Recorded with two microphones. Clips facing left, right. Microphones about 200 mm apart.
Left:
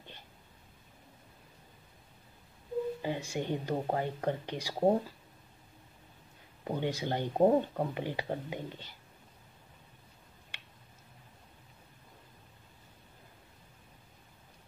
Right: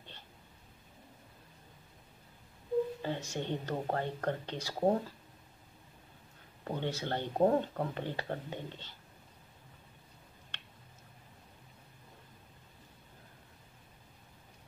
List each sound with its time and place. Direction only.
3.0 s speech: 15° left (ahead or behind)
6.6 s speech: 10° left (ahead or behind)